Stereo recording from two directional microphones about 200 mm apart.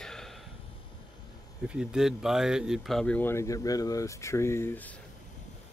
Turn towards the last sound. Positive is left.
turn(degrees=10)  # may be behind; listen again after turning